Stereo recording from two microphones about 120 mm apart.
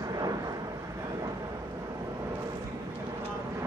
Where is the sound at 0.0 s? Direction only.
30° right (ahead or behind).